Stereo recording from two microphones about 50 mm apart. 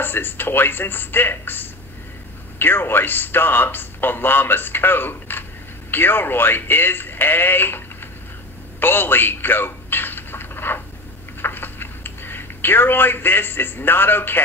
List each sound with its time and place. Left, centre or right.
0.0 s speech: left
8.7 s telephone: left
11.4 s a sound: left